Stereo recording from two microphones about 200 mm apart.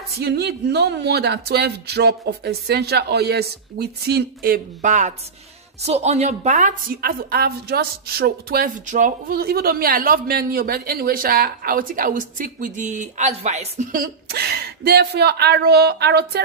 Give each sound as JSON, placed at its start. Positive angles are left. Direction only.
{"t": 0.2, "sound": "a woman's voice", "side_deg": -55}
{"t": 14.3, "sound": "a woman's voice", "side_deg": -50}